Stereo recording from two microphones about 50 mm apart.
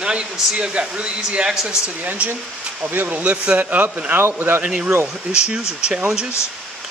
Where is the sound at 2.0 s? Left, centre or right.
Right.